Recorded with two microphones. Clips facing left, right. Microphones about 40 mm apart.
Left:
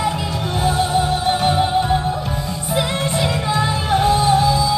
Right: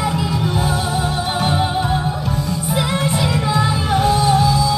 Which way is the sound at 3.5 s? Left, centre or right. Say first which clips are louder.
Left 1 dB; centre.